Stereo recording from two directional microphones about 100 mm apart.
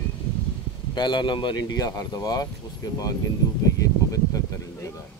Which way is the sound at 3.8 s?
35° left (ahead or behind).